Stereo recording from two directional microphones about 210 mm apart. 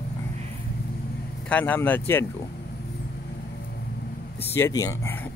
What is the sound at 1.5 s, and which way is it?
Speech, 10° left (ahead or behind).